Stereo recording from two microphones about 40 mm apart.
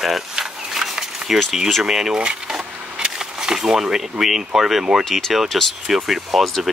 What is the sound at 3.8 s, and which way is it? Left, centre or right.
Speech, centre.